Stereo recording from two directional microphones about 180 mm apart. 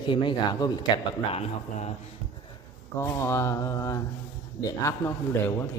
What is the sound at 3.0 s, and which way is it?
A man's voice, 15° left (ahead or behind).